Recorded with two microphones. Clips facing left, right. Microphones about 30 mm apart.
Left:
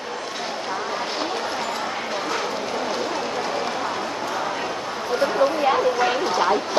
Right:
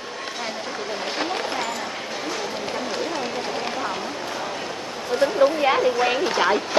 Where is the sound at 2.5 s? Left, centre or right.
Centre.